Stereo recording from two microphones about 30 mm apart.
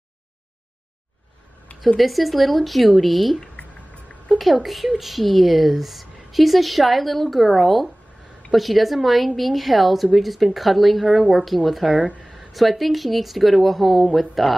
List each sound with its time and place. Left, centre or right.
2.0 s speech: centre
3.6 s a sound: left
4.4 s speech: centre